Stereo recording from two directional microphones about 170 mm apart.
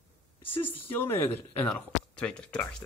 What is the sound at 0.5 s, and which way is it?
Speech, 10° left (ahead or behind).